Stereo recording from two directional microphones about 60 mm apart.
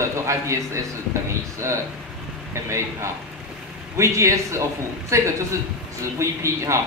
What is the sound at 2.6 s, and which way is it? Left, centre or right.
A man's voice, right.